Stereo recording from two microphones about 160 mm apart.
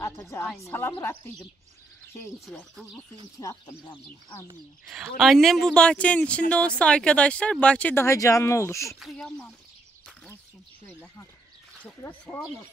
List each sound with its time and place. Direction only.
0.0 s a woman's voice: 20° left (ahead or behind)
2.7 s speech: centre (ahead or behind)
3.3 s speech: 20° left (ahead or behind)
4.9 s speech: centre (ahead or behind); by 8.9 s 20° left (ahead or behind)
9.0 s speech: 5° left (ahead or behind)
10.9 s speech: 10° left (ahead or behind)